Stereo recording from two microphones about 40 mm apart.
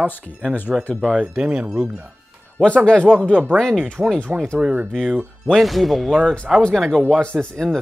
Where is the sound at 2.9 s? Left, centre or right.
Left.